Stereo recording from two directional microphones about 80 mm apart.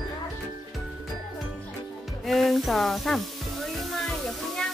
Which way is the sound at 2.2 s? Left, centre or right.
Centre.